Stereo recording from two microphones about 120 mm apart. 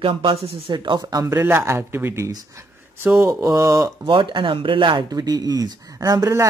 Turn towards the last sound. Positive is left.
turn(degrees=-30)  # may be behind; listen again after turning